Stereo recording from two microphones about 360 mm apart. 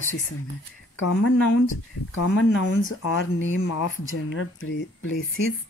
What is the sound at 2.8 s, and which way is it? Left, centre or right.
Speech, left.